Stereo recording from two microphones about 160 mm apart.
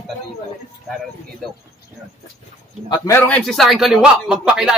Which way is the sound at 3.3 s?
Centre (ahead or behind).